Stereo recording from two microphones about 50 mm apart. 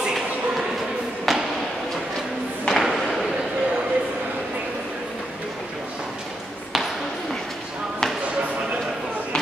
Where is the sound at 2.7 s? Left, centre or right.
Centre.